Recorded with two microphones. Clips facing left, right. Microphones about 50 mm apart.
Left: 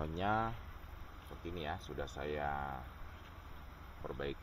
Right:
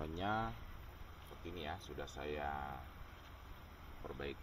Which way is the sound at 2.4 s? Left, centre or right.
Left.